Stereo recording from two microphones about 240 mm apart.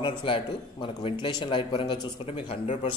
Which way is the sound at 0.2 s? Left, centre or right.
Left.